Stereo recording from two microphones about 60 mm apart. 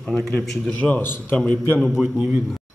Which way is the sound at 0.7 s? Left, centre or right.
Left.